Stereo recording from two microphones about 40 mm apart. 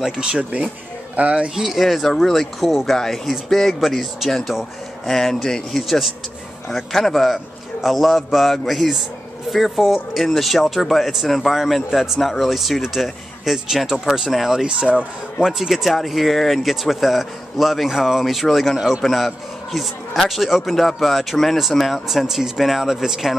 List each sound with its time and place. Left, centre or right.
0.0 s speech: centre
0.4 s speech: right
1.6 s speech: centre